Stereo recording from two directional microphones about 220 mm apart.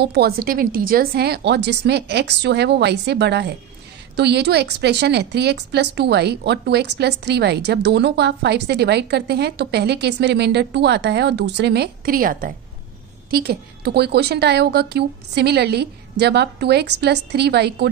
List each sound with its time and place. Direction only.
0.0 s a woman's voice: 50° right (ahead or behind)